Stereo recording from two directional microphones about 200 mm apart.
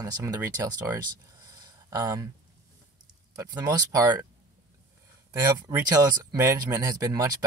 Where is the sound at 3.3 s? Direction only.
15° right (ahead or behind).